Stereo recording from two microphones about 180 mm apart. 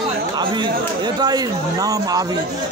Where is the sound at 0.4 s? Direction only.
25° right (ahead or behind).